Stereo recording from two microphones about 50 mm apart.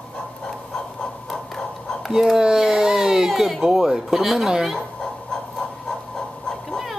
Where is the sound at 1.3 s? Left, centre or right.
Centre.